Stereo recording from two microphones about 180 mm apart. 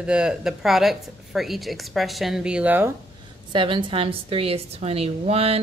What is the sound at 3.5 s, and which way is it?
A woman's voice, 25° right (ahead or behind).